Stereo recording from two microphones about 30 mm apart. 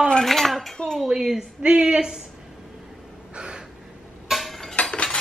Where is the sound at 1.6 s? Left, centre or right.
Right.